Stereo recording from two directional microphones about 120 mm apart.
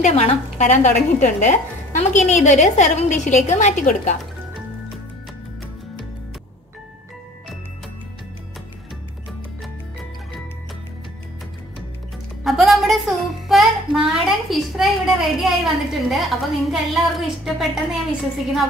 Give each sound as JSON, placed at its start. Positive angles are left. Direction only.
{"t": 0.0, "sound": "speech", "side_deg": 60}
{"t": 12.4, "sound": "music", "side_deg": 0}